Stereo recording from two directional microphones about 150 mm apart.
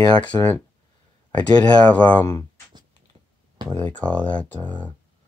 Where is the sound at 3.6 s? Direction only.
10° left (ahead or behind).